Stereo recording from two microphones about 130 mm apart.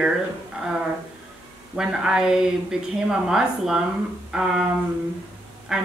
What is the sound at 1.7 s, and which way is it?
A woman's voice, 5° right (ahead or behind).